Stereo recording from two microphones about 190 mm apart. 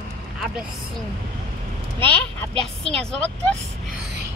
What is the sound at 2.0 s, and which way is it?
A woman's voice, 5° left (ahead or behind).